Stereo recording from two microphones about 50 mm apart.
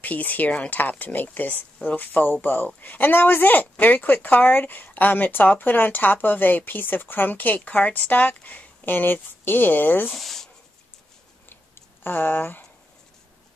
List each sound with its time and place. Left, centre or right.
0.0 s speech: left
10.1 s speech: centre
12.0 s speech: left